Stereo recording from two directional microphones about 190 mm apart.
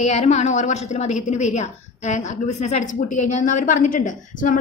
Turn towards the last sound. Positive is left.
turn(degrees=45)  # may be behind; listen again after turning